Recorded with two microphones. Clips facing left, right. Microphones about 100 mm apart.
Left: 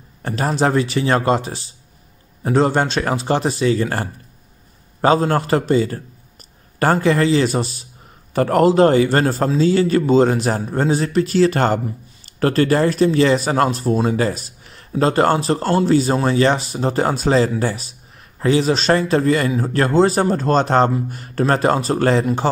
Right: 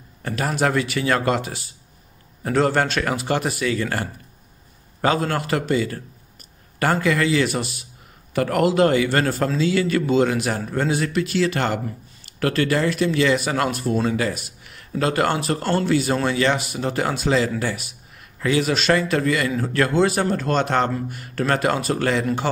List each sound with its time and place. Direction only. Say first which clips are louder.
0.2 s a man's voice: left 3 dB; 30° left (ahead or behind)